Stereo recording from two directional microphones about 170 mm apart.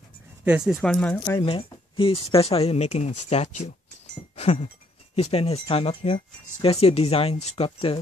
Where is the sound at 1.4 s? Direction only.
30° left (ahead or behind).